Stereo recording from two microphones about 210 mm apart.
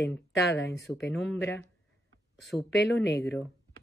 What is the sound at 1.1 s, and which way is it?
Speech, 5° left (ahead or behind).